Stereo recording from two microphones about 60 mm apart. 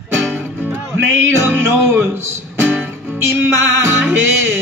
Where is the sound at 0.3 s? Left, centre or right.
Right.